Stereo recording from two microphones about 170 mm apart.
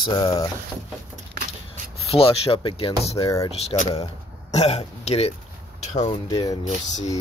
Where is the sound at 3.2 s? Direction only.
20° left (ahead or behind).